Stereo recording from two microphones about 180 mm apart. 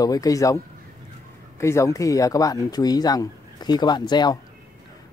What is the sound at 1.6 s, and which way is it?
Speech, 15° left (ahead or behind).